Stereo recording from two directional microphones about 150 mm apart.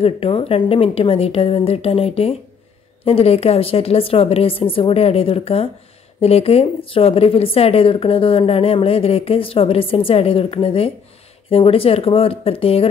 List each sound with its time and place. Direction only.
0.0 s speech: 40° left (ahead or behind)